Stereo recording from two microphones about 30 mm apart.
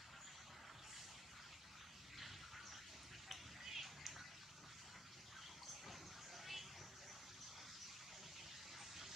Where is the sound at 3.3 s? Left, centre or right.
Centre.